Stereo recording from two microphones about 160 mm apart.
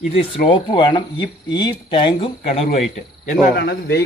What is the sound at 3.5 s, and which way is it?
Speech, 90° left.